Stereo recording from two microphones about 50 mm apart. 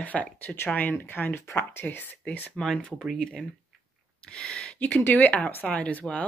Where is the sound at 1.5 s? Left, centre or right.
Left.